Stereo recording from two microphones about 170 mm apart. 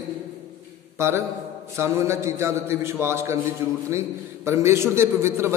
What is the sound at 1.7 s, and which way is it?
A man's voice, 15° right (ahead or behind).